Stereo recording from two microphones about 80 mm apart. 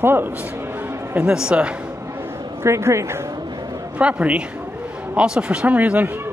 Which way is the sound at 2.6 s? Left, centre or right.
Right.